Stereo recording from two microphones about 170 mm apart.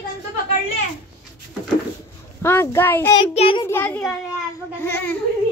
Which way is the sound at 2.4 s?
15° left (ahead or behind).